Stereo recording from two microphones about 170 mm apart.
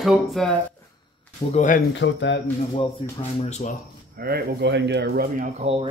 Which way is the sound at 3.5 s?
45° left (ahead or behind).